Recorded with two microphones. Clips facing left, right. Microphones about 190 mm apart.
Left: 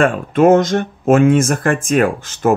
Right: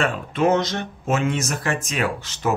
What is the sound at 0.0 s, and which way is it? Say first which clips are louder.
Speech: left 8 dB; 50° left (ahead or behind).